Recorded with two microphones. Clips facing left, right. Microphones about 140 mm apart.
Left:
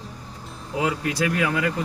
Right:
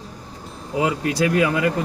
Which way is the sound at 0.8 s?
25° right (ahead or behind).